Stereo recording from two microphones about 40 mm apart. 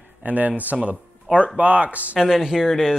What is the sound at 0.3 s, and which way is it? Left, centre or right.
Speech, right.